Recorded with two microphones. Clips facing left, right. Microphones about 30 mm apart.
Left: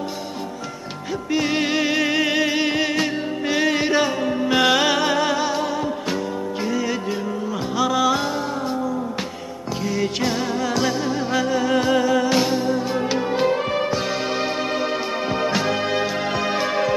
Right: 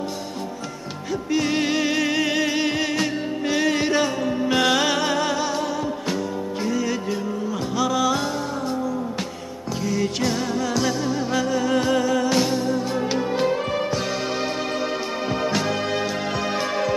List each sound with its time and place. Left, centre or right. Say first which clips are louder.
1.3 s music: left 1 dB; centre
9.8 s music: left 1 dB; centre